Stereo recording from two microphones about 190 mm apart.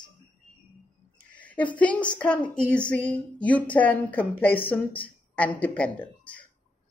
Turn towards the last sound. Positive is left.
turn(degrees=5)  # may be behind; listen again after turning